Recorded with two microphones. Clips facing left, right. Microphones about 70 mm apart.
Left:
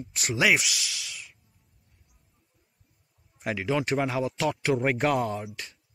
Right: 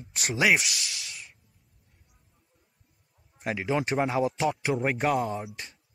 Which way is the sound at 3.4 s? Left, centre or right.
Centre.